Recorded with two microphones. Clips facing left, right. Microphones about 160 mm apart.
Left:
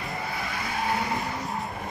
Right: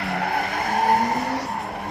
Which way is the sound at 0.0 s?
70° right (ahead or behind).